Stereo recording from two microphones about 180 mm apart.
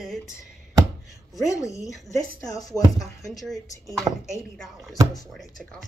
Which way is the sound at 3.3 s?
Centre (ahead or behind).